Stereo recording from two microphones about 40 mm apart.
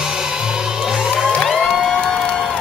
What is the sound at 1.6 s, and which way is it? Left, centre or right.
Music, centre.